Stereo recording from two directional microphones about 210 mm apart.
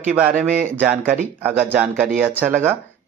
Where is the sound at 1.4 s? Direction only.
10° right (ahead or behind).